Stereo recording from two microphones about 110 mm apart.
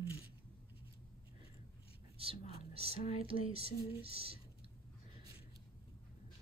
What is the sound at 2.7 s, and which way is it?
Speech, 65° right (ahead or behind).